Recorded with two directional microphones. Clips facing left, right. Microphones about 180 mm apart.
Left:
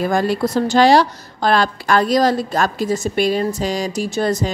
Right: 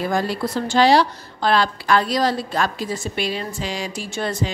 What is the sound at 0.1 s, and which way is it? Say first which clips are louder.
A woman's voice: left 5 dB; 45° left (ahead or behind).